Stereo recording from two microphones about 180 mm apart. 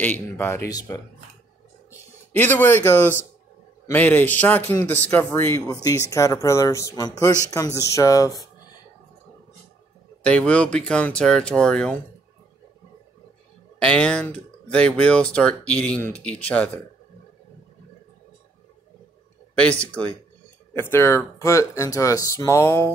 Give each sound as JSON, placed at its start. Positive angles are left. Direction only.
{"t": 0.0, "sound": "a man's voice", "side_deg": 10}
{"t": 10.2, "sound": "speech", "side_deg": 5}
{"t": 13.7, "sound": "a man's voice", "side_deg": 5}
{"t": 19.8, "sound": "a man's voice", "side_deg": 5}